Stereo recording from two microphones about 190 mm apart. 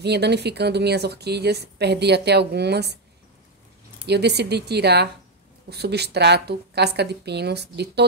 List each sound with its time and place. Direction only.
0.0 s speech: 60° right (ahead or behind)
4.0 s speech: 60° right (ahead or behind)